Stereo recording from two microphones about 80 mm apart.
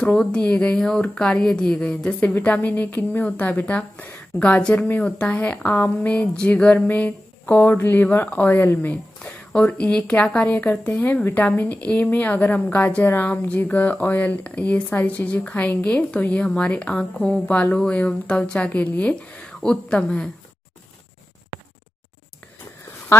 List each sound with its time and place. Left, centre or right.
0.0 s speech: centre
2.1 s a woman's voice: left